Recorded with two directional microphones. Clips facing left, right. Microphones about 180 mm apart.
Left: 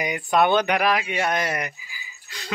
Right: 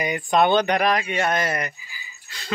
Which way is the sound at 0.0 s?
10° left (ahead or behind).